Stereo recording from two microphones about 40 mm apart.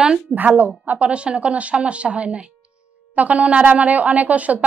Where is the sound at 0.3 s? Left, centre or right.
Right.